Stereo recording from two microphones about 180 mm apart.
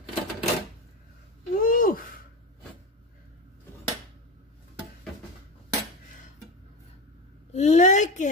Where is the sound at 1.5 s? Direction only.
50° left (ahead or behind).